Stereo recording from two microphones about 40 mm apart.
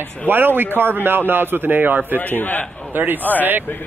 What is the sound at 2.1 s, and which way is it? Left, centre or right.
Speech, left.